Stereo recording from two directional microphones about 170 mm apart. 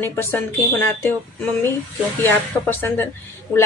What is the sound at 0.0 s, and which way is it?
Speech, 15° left (ahead or behind).